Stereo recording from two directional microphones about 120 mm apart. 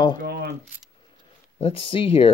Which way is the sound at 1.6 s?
50° left (ahead or behind).